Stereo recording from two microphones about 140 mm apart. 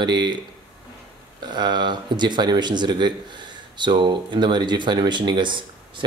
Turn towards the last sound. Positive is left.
turn(degrees=-35)  # may be behind; listen again after turning